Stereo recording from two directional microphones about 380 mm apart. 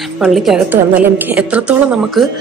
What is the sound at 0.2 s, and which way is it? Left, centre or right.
A woman's voice, centre.